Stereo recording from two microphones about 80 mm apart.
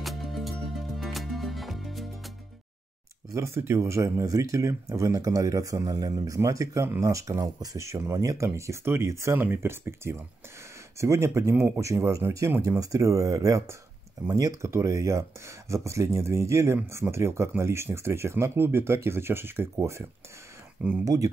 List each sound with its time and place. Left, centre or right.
0.0 s music: centre
3.3 s speech: right
12.6 s speech: right